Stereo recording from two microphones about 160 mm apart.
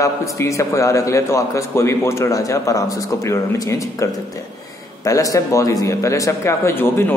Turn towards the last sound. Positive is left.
turn(degrees=15)  # may be behind; listen again after turning